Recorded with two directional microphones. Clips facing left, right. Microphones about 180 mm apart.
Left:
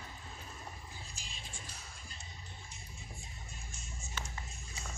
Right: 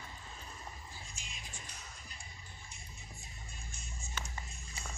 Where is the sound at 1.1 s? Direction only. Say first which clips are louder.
Left 1 dB; 30° left (ahead or behind).